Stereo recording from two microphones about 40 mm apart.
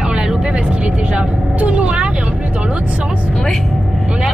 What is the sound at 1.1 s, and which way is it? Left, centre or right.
Vehicle, right.